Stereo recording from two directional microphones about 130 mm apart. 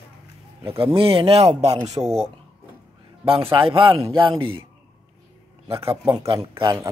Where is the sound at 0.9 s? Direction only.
45° right (ahead or behind).